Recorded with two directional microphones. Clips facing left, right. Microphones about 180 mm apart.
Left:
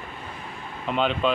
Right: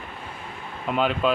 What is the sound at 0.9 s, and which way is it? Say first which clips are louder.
Speech: right 1 dB; 5° right (ahead or behind).